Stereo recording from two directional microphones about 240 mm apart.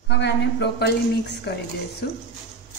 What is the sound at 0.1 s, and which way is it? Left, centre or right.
A woman's voice, left.